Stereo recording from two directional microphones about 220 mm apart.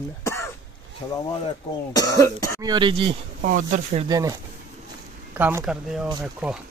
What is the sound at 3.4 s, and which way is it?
Speech, 40° right (ahead or behind).